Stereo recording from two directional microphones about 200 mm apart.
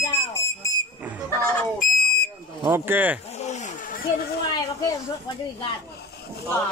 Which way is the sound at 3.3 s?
35° left (ahead or behind).